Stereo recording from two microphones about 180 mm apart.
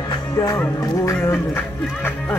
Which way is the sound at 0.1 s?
20° left (ahead or behind).